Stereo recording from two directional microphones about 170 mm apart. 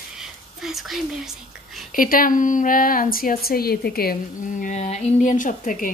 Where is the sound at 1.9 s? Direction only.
55° left (ahead or behind).